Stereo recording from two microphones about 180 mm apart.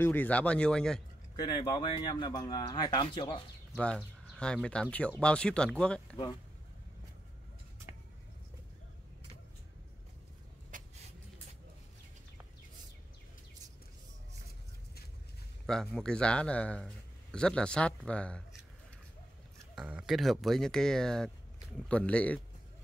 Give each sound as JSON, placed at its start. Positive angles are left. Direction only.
{"t": 0.0, "sound": "speech", "side_deg": 10}
{"t": 1.3, "sound": "speech", "side_deg": 25}
{"t": 3.7, "sound": "speech", "side_deg": 5}
{"t": 10.7, "sound": "vehicle", "side_deg": -45}
{"t": 15.6, "sound": "speech", "side_deg": 0}
{"t": 19.7, "sound": "speech", "side_deg": -5}